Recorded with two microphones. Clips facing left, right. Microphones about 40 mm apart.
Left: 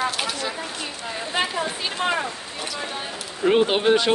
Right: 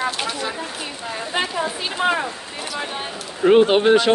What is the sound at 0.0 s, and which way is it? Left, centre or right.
Speech, centre.